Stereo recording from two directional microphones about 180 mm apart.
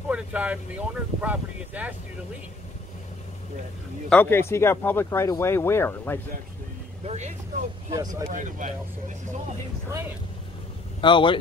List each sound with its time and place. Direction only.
0.1 s speech: 5° right (ahead or behind)
4.1 s speech: 10° left (ahead or behind)
7.1 s speech: 40° right (ahead or behind)
7.9 s speech: 20° right (ahead or behind)
8.3 s speech: 45° right (ahead or behind)
11.0 s speech: 25° left (ahead or behind)